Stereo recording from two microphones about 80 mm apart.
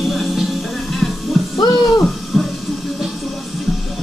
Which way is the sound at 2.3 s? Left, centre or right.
Centre.